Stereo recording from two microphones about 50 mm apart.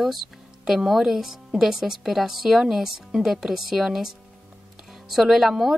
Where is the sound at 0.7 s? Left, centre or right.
Centre.